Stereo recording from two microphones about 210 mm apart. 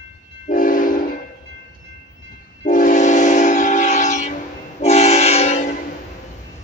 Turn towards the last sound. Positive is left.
turn(degrees=35)  # may be behind; listen again after turning